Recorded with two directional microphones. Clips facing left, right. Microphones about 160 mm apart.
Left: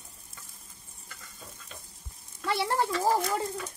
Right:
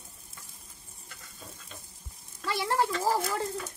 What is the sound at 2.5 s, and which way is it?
Speech, 25° left (ahead or behind).